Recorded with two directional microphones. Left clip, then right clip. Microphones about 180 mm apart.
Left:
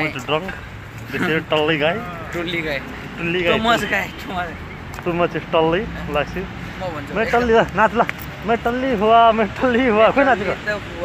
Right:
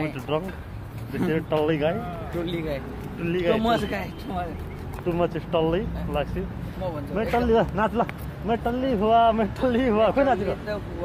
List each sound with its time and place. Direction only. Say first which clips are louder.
0.3 s speech: left 6 dB; 15° left (ahead or behind)
2.4 s speech: left 8 dB; 10° right (ahead or behind)
3.3 s speech: left 5 dB; 20° left (ahead or behind)
3.6 s speech: left 7 dB; centre (ahead or behind)
5.0 s speech: left 5 dB; 30° left (ahead or behind)